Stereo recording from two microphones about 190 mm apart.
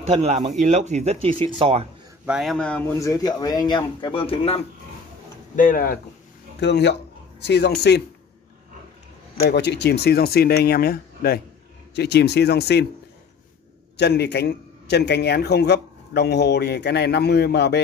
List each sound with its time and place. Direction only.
0.0 s speech: 35° right (ahead or behind)
2.2 s speech: centre (ahead or behind)
3.0 s speech: 20° left (ahead or behind)
5.6 s speech: 50° left (ahead or behind)
6.6 s speech: 65° left (ahead or behind)
9.4 s a man's voice: 65° left (ahead or behind)
13.9 s a man's voice: 60° left (ahead or behind)